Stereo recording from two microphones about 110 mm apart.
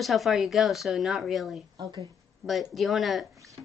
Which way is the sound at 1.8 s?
35° right (ahead or behind).